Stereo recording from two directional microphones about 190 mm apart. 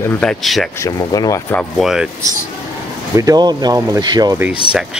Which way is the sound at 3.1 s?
20° right (ahead or behind).